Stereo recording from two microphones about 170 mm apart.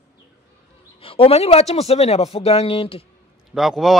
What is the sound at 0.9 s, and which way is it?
A man's voice, 30° left (ahead or behind).